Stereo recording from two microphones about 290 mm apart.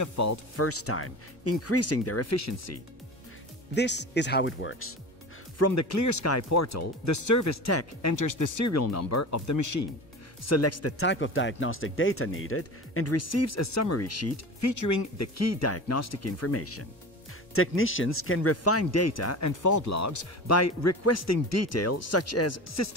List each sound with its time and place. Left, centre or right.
0.0 s speech: left
3.7 s speech: left
5.6 s speech: left
10.4 s speech: left
11.1 s speech: left